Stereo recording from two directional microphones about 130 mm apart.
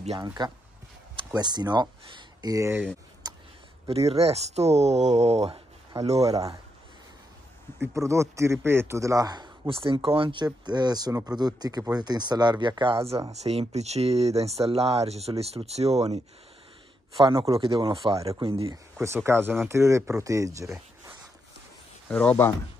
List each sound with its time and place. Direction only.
0.4 s speech: 35° right (ahead or behind)
3.2 s a sound: 30° right (ahead or behind)
3.9 s speech: 50° right (ahead or behind)
6.1 s speech: 25° right (ahead or behind)
7.8 s speech: 25° right (ahead or behind); by 13.1 s 40° right (ahead or behind)
13.3 s speech: 55° right (ahead or behind)
17.2 s speech: 40° right (ahead or behind)
18.9 s speech: 20° right (ahead or behind)
22.1 s speech: 10° left (ahead or behind)